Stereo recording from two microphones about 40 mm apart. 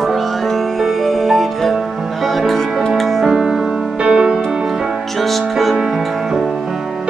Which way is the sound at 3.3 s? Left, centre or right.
Centre.